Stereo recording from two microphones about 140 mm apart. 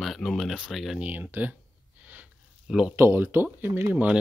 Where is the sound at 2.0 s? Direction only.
10° right (ahead or behind).